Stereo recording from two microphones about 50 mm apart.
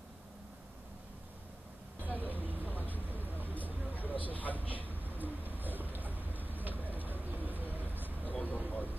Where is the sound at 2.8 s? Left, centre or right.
Left.